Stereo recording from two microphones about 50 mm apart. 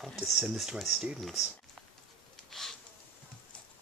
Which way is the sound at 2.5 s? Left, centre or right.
Centre.